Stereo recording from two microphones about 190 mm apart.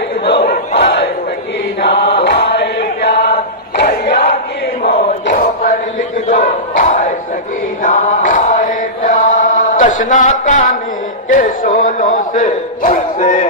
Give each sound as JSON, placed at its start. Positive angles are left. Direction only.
{"t": 0.2, "sound": "battle cry", "side_deg": 60}
{"t": 1.8, "sound": "chant", "side_deg": 60}
{"t": 4.8, "sound": "crowd", "side_deg": 55}
{"t": 6.2, "sound": "battle cry", "side_deg": 45}
{"t": 7.8, "sound": "chant", "side_deg": 40}
{"t": 11.2, "sound": "bow-wow", "side_deg": 45}